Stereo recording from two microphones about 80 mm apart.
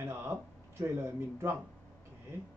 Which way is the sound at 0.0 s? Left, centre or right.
Right.